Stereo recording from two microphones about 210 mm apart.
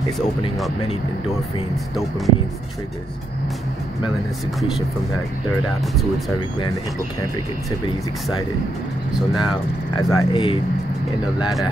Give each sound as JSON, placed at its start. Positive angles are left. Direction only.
{"t": 2.0, "sound": "speech", "side_deg": 0}
{"t": 9.4, "sound": "speech", "side_deg": 20}